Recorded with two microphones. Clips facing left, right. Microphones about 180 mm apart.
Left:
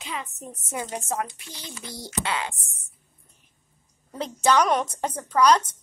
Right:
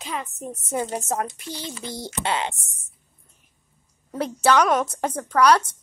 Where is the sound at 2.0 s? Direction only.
25° right (ahead or behind).